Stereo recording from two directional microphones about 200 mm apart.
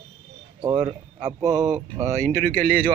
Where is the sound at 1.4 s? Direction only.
20° right (ahead or behind).